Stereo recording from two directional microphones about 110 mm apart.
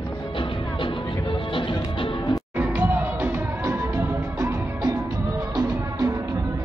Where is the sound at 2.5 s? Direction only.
15° right (ahead or behind).